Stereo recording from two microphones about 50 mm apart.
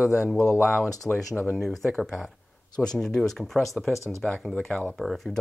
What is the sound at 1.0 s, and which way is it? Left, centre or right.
Speech, centre.